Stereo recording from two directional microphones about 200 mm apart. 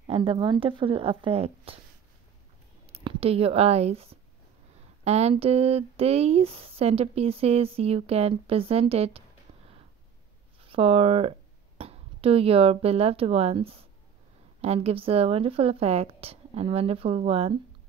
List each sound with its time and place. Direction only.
0.0 s speech: 30° right (ahead or behind)
2.9 s speech: 30° right (ahead or behind)
10.6 s speech: 30° right (ahead or behind)